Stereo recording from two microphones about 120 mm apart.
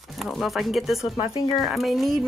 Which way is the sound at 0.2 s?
Centre (ahead or behind).